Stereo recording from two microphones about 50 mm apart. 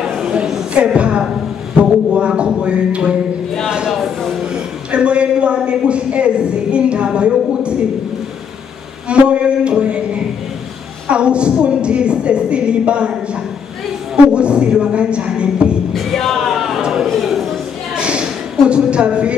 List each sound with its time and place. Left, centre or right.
0.7 s a woman's voice: right
4.9 s speech: right
9.1 s speech: right
14.1 s a woman's voice: right
15.9 s music: centre
16.8 s a sound: centre
17.9 s a sound: centre